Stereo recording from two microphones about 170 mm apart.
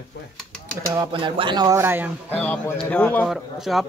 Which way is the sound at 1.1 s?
30° right (ahead or behind).